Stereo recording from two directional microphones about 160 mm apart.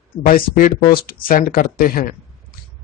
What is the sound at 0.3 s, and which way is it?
Speech, 60° left (ahead or behind).